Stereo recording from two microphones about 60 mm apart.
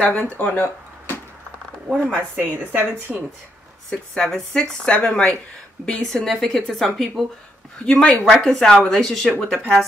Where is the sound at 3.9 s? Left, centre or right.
Centre.